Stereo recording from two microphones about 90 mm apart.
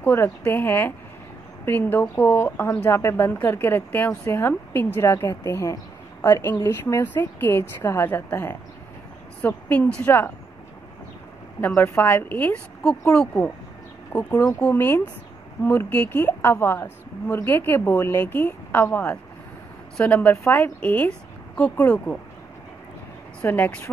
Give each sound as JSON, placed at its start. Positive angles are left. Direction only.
{"t": 0.0, "sound": "a woman's voice", "side_deg": 25}
{"t": 11.7, "sound": "a woman's voice", "side_deg": 30}
{"t": 14.3, "sound": "speech", "side_deg": 30}
{"t": 14.6, "sound": "a woman's voice", "side_deg": 20}
{"t": 20.4, "sound": "a woman's voice", "side_deg": 30}
{"t": 20.8, "sound": "speech", "side_deg": 15}
{"t": 23.4, "sound": "a woman's voice", "side_deg": 20}